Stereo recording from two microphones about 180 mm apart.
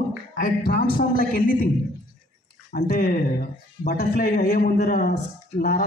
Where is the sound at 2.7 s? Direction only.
55° left (ahead or behind).